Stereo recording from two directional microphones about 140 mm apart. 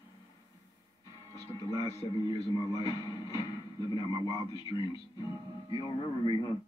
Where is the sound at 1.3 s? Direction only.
25° left (ahead or behind).